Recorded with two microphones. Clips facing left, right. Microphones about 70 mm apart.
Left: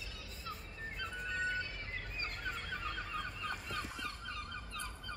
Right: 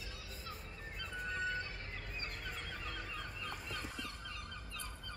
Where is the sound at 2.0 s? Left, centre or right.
Left.